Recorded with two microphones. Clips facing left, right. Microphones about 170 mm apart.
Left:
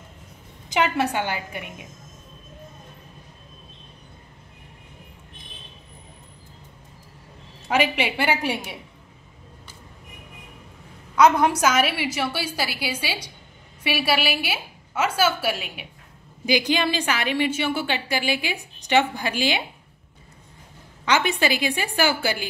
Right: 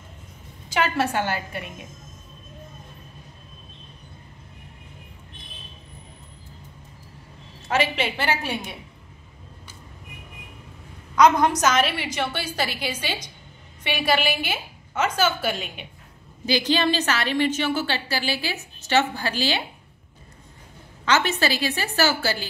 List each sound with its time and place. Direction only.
0.7 s a woman's voice: 20° left (ahead or behind)
7.6 s a woman's voice: 15° left (ahead or behind)
11.1 s a woman's voice: 10° left (ahead or behind)
21.0 s a woman's voice: 15° left (ahead or behind)